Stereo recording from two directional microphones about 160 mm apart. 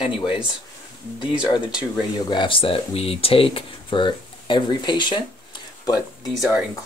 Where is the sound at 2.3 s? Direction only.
30° left (ahead or behind).